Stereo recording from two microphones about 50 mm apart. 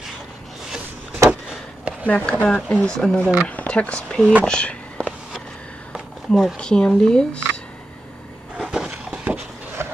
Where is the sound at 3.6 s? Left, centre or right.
Left.